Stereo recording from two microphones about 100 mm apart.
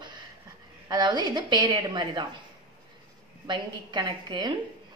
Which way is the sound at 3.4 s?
45° right (ahead or behind).